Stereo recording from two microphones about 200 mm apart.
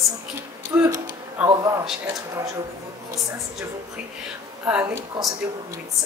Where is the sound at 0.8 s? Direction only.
20° right (ahead or behind).